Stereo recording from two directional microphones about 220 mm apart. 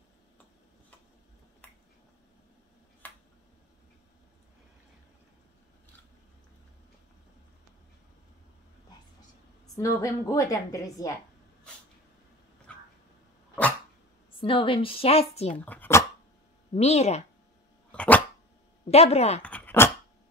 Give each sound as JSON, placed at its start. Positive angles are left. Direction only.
{"t": 3.0, "sound": "finger snapping", "side_deg": 10}
{"t": 9.8, "sound": "a woman's voice", "side_deg": 15}
{"t": 12.7, "sound": "dog", "side_deg": 5}
{"t": 14.4, "sound": "a woman's voice", "side_deg": 25}
{"t": 15.6, "sound": "speech", "side_deg": 10}
{"t": 16.7, "sound": "a woman's voice", "side_deg": 30}
{"t": 17.9, "sound": "dog", "side_deg": 5}
{"t": 18.9, "sound": "a woman's voice", "side_deg": 30}
{"t": 19.4, "sound": "dog", "side_deg": 5}